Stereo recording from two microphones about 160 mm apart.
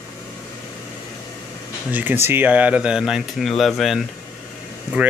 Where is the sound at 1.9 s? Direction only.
10° right (ahead or behind).